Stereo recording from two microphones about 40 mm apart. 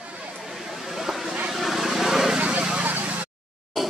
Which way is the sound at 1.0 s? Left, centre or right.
Centre.